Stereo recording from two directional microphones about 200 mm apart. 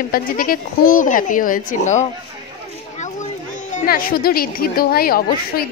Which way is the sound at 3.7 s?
45° left (ahead or behind).